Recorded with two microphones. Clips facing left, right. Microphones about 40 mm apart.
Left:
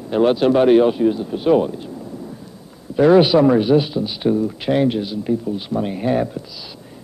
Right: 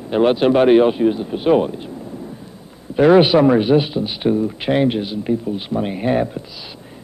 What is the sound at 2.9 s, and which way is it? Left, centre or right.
A man's voice, right.